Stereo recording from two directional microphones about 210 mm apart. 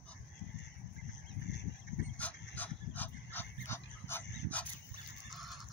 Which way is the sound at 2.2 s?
5° left (ahead or behind).